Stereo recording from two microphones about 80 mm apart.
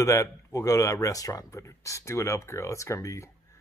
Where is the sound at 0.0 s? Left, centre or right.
Left.